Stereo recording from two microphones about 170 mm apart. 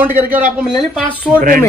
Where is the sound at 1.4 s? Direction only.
55° right (ahead or behind).